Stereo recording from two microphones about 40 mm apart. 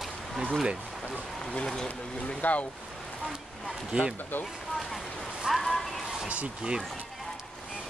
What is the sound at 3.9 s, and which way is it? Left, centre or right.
Speech, right.